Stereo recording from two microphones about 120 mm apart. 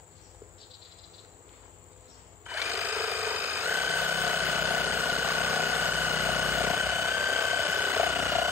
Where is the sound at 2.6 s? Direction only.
20° right (ahead or behind).